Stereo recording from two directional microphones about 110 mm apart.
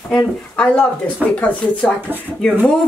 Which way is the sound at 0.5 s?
10° left (ahead or behind).